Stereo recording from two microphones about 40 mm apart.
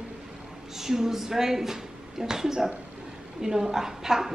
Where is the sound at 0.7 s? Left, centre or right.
Centre.